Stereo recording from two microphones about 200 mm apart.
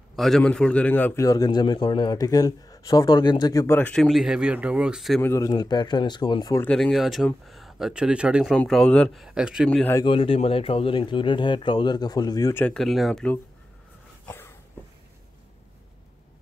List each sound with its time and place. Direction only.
0.1 s a man's voice: centre (ahead or behind)
5.2 s a man's voice: 15° left (ahead or behind)
9.9 s speech: 25° left (ahead or behind); by 13.4 s 5° left (ahead or behind)
14.2 s a sound: 10° left (ahead or behind)